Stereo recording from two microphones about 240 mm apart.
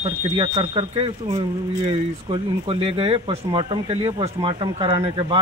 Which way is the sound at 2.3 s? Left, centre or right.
Right.